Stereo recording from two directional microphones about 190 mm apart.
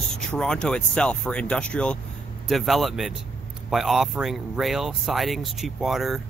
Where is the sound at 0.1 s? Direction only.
5° left (ahead or behind).